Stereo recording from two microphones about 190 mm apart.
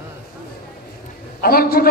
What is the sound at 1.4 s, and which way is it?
Speech, 50° left (ahead or behind).